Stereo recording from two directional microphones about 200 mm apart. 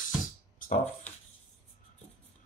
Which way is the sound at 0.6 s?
45° left (ahead or behind).